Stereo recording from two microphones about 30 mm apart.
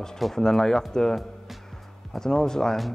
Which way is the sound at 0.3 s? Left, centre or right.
Centre.